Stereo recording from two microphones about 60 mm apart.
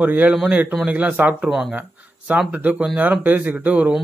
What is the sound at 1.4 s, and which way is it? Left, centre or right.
Speech, centre.